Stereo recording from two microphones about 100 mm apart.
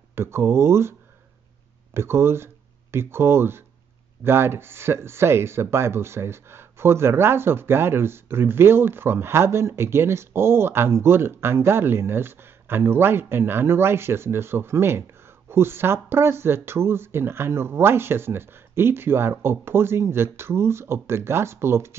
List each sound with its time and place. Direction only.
0.1 s speech: 25° right (ahead or behind)
2.0 s speech: 25° right (ahead or behind)